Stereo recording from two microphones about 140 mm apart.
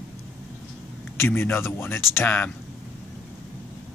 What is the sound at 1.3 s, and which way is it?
Speech, 15° left (ahead or behind).